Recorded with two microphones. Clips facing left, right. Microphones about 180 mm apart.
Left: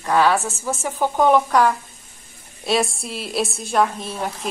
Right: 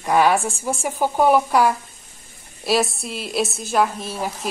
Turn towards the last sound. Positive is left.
turn(degrees=-5)  # may be behind; listen again after turning